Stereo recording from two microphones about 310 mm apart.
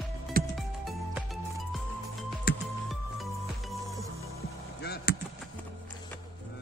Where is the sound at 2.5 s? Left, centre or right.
Left.